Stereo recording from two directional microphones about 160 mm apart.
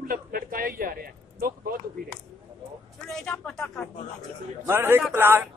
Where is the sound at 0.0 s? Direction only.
65° right (ahead or behind).